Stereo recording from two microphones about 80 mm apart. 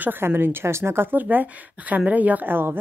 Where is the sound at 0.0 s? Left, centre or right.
Right.